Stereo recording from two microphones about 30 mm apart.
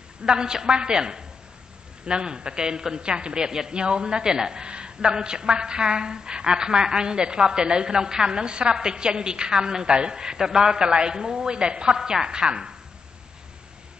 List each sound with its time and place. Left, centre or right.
0.2 s a woman's voice: right
4.6 s a sound: right
5.0 s a woman's voice: right